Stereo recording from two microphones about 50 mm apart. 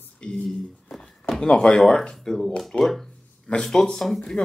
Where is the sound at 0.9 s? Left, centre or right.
Centre.